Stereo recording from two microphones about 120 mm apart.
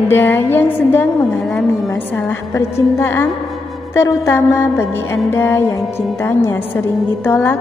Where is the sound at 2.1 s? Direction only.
20° left (ahead or behind).